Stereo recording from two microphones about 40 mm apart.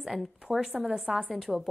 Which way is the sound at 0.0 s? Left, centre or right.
Centre.